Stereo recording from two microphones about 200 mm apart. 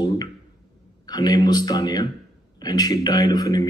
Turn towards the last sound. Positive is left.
turn(degrees=20)  # may be behind; listen again after turning